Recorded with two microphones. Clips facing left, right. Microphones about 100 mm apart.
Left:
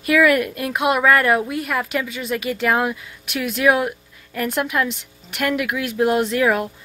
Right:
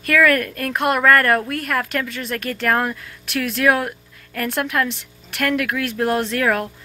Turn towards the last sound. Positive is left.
turn(degrees=5)  # may be behind; listen again after turning